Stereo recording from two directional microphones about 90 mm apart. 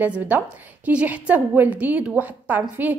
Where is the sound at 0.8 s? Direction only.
15° right (ahead or behind).